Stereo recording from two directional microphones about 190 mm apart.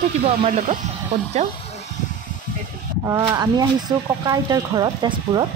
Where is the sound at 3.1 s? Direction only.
20° right (ahead or behind).